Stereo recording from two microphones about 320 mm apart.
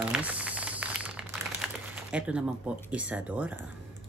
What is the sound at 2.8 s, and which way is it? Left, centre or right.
Speech, centre.